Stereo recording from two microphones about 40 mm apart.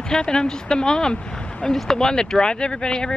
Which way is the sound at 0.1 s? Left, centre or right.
Centre.